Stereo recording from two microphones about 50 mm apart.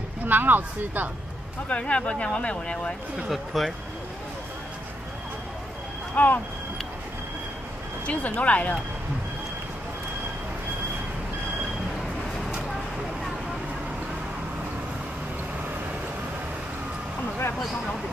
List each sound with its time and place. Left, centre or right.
0.3 s speech: right
1.7 s speech: left
3.3 s speech: centre
6.1 s speech: left
8.1 s speech: left